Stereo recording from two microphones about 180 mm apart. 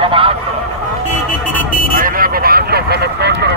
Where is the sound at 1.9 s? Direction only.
50° right (ahead or behind); by 3.5 s 70° right (ahead or behind).